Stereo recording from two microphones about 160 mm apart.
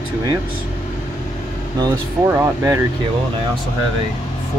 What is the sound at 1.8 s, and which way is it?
Speech, 20° right (ahead or behind).